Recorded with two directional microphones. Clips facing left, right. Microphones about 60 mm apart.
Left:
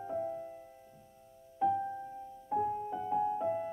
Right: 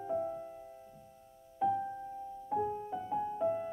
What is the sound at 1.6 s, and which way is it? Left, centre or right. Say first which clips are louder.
Music: left 1 dB; centre.